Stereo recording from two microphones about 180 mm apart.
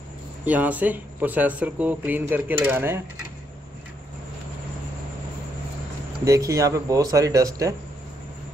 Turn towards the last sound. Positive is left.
turn(degrees=-20)  # may be behind; listen again after turning